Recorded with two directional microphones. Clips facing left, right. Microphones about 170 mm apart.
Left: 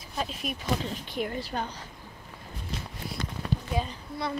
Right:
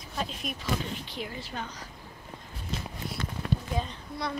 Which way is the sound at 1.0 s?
50° left (ahead or behind).